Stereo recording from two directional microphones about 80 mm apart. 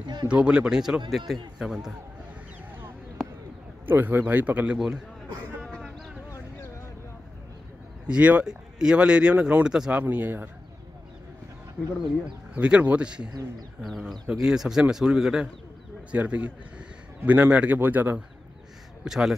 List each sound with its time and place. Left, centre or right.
0.3 s a man's voice: centre
3.2 s bird: centre
3.8 s speech: right
4.7 s a man's voice: centre
5.8 s a sound: centre
8.1 s speech: centre
10.0 s speech: right
12.5 s speech: centre
13.3 s speech: right
13.8 s a man's voice: centre; by 18.2 s right
19.0 s a man's voice: centre